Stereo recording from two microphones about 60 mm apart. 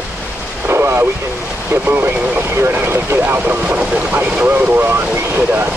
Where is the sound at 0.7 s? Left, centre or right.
Right.